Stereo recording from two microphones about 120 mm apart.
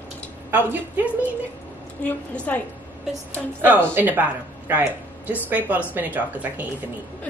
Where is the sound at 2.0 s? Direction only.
10° left (ahead or behind).